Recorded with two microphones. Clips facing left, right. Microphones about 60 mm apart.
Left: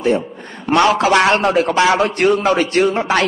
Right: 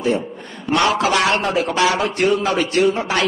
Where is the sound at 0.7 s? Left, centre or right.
Left.